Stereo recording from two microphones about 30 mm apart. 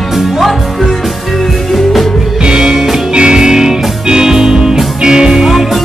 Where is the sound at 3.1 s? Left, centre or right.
Right.